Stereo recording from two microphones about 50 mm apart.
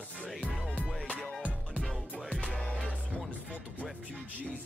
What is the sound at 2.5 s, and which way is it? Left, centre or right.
Music, left.